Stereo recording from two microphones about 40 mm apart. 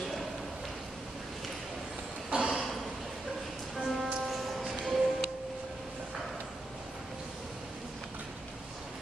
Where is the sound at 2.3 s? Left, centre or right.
Right.